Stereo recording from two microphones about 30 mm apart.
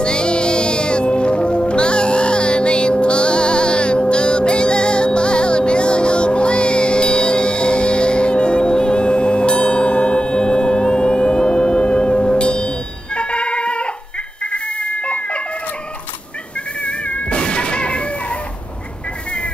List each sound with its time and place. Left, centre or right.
0.0 s music: left
14.4 s cat: left
16.8 s cat: left
17.4 s music: left